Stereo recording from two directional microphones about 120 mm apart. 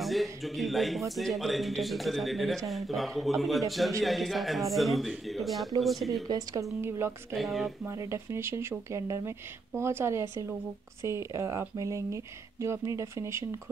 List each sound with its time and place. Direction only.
0.0 s speech: centre (ahead or behind)
6.2 s speech: 30° right (ahead or behind)
7.3 s speech: centre (ahead or behind)
7.8 s speech: 20° right (ahead or behind)